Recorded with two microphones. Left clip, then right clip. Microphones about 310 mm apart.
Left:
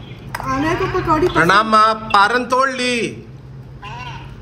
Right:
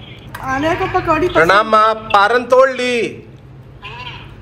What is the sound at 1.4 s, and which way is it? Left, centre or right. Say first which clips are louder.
A man's voice: right 2 dB; centre.